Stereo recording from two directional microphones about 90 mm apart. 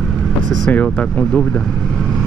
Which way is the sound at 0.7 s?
15° left (ahead or behind).